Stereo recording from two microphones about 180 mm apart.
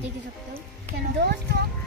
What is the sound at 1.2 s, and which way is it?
Speech, 65° right (ahead or behind).